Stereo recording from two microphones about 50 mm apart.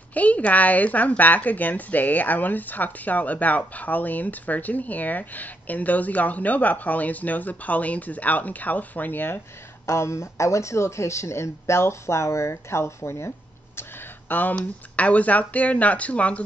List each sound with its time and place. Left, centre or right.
0.1 s speech: left
9.8 s speech: left
14.5 s speech: left